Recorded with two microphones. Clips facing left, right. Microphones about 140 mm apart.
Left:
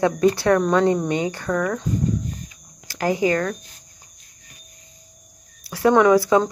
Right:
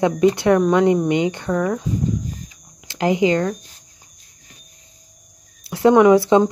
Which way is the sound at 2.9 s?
20° right (ahead or behind).